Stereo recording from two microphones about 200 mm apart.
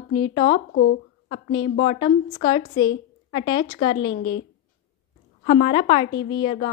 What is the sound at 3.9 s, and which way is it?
Speech, 65° left (ahead or behind).